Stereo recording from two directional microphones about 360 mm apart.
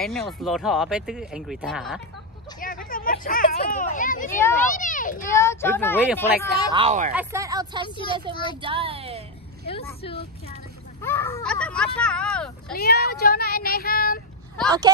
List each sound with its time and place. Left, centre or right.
0.0 s speech: centre
2.6 s speech: left
5.3 s speech: centre
6.7 s speech: centre
9.7 s speech: centre
12.7 s speech: left